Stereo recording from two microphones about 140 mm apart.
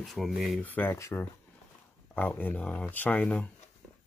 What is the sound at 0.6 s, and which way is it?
Speech, 15° left (ahead or behind).